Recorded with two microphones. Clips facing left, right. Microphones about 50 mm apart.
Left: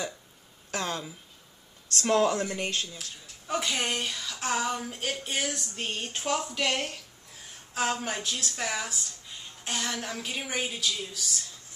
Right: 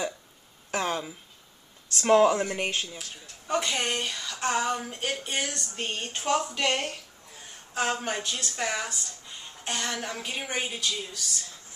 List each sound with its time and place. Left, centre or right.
0.7 s speech: centre
3.4 s speech: centre